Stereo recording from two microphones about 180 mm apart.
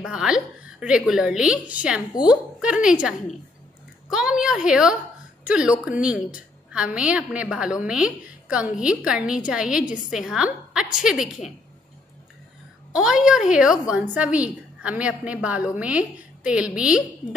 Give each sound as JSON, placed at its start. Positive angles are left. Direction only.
{"t": 0.0, "sound": "a woman's voice", "side_deg": -5}
{"t": 12.9, "sound": "a woman's voice", "side_deg": -5}